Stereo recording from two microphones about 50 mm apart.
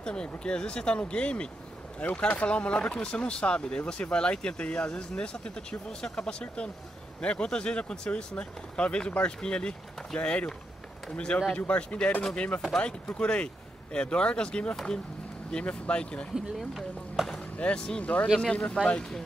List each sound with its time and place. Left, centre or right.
0.0 s speech: centre; by 12.6 s left
12.7 s speech: left
16.3 s speech: centre
17.7 s speech: centre
18.0 s speech: left